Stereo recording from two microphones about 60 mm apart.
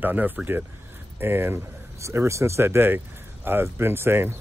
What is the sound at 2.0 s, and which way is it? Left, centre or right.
Speech, right.